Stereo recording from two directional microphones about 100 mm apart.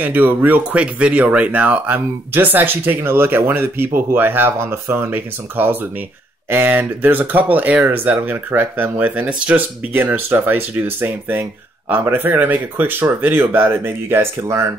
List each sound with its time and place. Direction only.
0.0 s speech: 20° right (ahead or behind)